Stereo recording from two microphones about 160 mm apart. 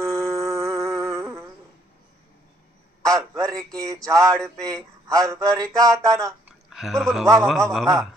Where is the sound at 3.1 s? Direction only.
20° right (ahead or behind).